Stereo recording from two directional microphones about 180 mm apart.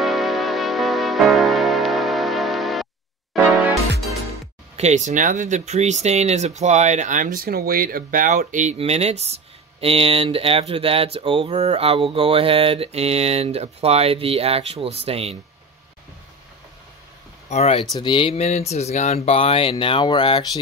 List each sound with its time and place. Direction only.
0.0 s music: centre (ahead or behind)
4.7 s speech: 40° right (ahead or behind)
17.5 s speech: 35° left (ahead or behind)